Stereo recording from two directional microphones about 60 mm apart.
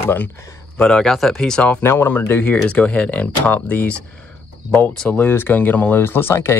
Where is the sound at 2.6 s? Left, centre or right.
Left.